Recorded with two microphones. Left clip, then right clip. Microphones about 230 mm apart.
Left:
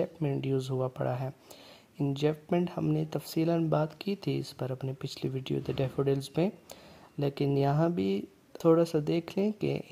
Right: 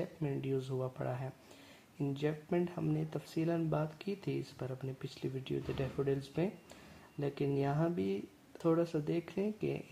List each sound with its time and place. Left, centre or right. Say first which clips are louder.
0.0 s speech: left 7 dB; left